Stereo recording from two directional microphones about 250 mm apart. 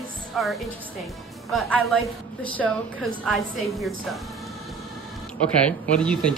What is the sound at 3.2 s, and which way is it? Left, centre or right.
Speech, centre.